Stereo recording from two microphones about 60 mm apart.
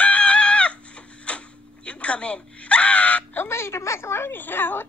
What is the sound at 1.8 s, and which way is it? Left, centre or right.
Wail, left.